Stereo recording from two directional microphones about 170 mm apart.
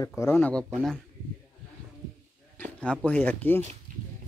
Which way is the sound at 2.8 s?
5° left (ahead or behind).